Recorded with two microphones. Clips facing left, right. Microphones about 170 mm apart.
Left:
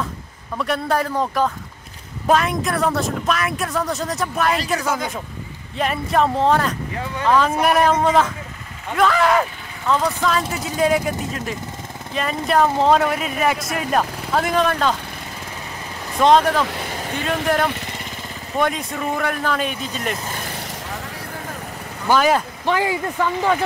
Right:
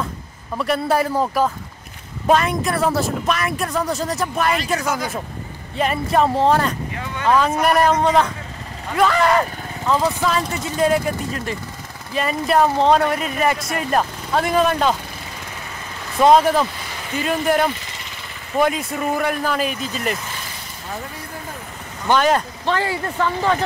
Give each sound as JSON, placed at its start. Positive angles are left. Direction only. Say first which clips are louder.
{"t": 0.6, "sound": "a man's voice", "louder": "right 2 dB", "side_deg": -5}
{"t": 5.8, "sound": "speech", "louder": "right 1 dB", "side_deg": 0}
{"t": 16.2, "sound": "a man's voice", "louder": "right 1 dB", "side_deg": -5}
{"t": 17.7, "sound": "vehicle", "louder": "left 5 dB", "side_deg": 60}
{"t": 18.6, "sound": "speech", "louder": "right 2 dB", "side_deg": -5}
{"t": 22.0, "sound": "speech", "louder": "even", "side_deg": 5}